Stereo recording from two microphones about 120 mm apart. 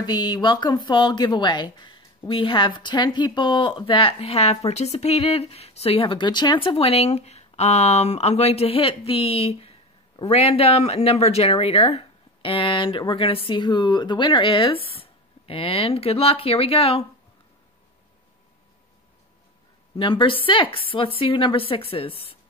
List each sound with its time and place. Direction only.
0.0 s speech: 35° left (ahead or behind); by 17.0 s 55° left (ahead or behind)
20.0 s speech: 45° left (ahead or behind)